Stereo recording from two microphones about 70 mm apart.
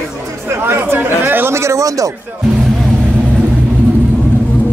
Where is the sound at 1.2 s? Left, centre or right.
Right.